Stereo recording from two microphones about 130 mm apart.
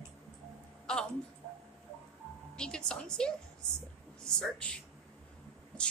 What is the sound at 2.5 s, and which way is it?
A woman's voice, 5° left (ahead or behind).